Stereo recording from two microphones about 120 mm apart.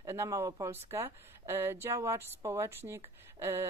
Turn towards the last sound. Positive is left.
turn(degrees=-25)  # may be behind; listen again after turning